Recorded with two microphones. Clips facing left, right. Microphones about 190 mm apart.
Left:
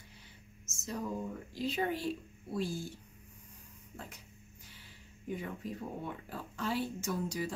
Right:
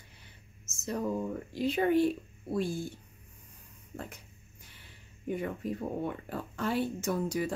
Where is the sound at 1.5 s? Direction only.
60° right (ahead or behind).